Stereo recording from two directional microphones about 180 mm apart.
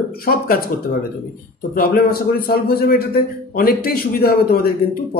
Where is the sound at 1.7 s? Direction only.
55° left (ahead or behind).